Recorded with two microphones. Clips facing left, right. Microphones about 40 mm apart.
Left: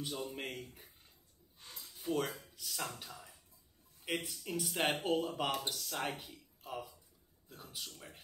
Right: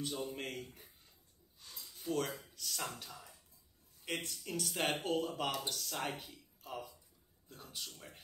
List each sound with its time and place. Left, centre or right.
0.0 s speech: centre
1.6 s a sound: left
2.0 s speech: centre